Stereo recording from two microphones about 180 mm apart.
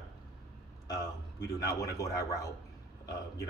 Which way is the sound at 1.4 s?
20° left (ahead or behind).